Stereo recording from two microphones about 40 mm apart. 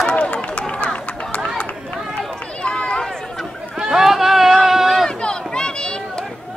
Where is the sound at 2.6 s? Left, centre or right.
Left.